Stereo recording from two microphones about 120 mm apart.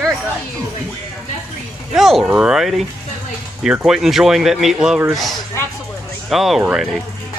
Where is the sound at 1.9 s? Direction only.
Centre (ahead or behind).